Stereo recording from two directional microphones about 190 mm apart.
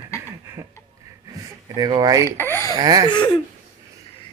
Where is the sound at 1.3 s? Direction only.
20° right (ahead or behind).